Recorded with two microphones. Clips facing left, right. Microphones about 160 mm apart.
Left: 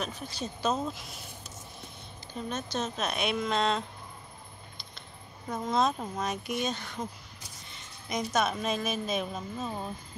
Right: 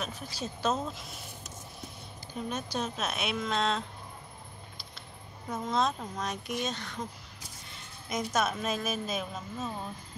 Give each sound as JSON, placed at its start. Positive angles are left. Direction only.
{"t": 0.0, "sound": "a woman's voice", "side_deg": -5}
{"t": 2.3, "sound": "a woman's voice", "side_deg": -10}
{"t": 5.5, "sound": "a woman's voice", "side_deg": 0}
{"t": 8.1, "sound": "a woman's voice", "side_deg": -5}